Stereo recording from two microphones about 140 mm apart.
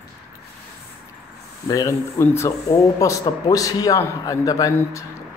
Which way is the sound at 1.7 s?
25° left (ahead or behind).